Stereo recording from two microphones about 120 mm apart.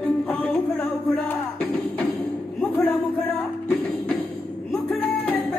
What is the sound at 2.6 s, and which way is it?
Music, 10° left (ahead or behind).